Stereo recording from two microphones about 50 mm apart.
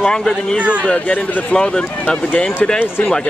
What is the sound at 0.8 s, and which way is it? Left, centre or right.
Speech, left.